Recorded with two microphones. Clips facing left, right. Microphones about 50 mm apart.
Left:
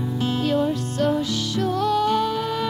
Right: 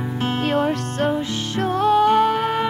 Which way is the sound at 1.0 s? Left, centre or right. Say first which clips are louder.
Even; right.